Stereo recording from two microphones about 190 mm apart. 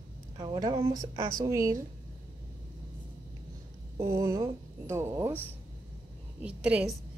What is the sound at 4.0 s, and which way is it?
A woman's voice, 15° right (ahead or behind).